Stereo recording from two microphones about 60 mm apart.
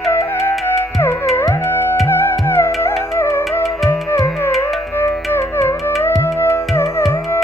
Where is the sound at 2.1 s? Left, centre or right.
Left.